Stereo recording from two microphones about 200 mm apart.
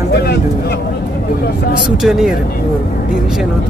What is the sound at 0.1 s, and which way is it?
Vehicle, 55° left (ahead or behind).